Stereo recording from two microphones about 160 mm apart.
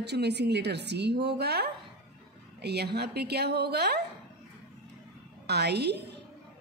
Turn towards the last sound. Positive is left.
turn(degrees=-90)